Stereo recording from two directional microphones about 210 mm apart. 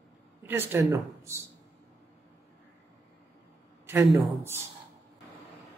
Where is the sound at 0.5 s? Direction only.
10° right (ahead or behind).